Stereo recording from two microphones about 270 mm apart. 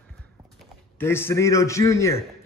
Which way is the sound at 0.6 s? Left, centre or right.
Centre.